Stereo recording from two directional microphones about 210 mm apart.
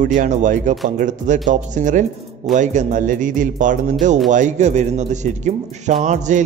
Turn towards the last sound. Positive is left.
turn(degrees=-35)  # may be behind; listen again after turning